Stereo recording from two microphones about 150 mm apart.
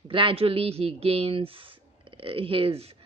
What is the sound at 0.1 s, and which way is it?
Speech, 35° right (ahead or behind).